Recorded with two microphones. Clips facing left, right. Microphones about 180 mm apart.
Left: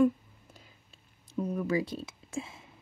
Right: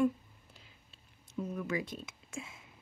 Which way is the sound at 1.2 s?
35° left (ahead or behind).